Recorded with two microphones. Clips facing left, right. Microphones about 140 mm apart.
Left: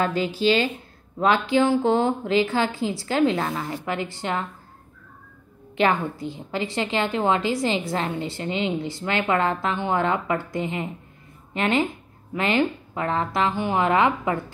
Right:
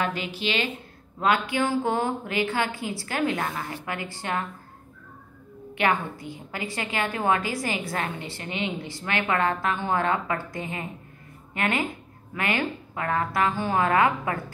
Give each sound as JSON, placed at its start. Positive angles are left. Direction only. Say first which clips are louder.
{"t": 0.0, "sound": "a woman's voice", "louder": "left 6 dB", "side_deg": 35}
{"t": 5.8, "sound": "a woman's voice", "louder": "left 3 dB", "side_deg": 30}